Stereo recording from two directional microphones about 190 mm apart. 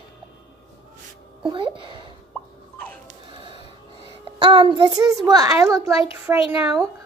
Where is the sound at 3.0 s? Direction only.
30° right (ahead or behind).